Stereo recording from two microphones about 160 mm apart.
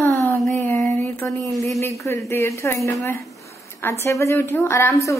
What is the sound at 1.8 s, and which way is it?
A woman's voice, 20° left (ahead or behind).